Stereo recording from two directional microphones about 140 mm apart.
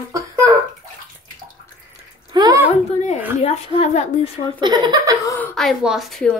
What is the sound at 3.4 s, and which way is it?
Speech, 45° left (ahead or behind).